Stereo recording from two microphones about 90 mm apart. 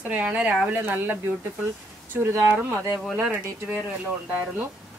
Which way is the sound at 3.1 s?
15° right (ahead or behind).